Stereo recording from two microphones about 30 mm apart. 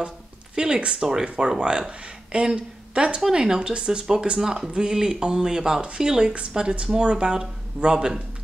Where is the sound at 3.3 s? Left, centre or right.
Centre.